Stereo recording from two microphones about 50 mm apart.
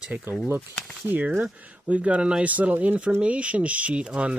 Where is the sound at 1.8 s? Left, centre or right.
Right.